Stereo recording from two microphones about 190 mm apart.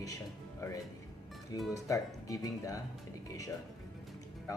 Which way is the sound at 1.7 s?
15° left (ahead or behind).